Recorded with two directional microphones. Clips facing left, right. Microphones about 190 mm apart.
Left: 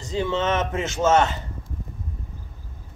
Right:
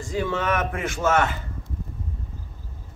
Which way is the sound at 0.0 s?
20° left (ahead or behind).